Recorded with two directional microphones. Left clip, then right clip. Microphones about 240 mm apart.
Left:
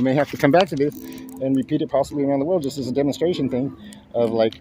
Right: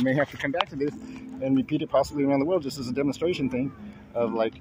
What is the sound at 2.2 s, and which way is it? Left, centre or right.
Speech, centre.